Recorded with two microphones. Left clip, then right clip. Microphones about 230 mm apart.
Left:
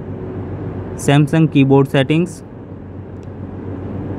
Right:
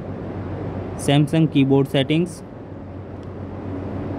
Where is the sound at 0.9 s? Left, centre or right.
Centre.